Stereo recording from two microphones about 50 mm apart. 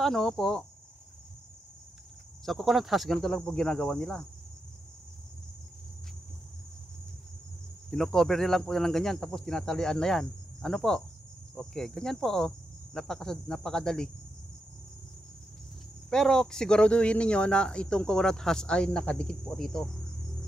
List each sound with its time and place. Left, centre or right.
0.0 s speech: centre
2.4 s speech: centre
7.9 s speech: centre
16.1 s speech: centre
18.9 s cricket: centre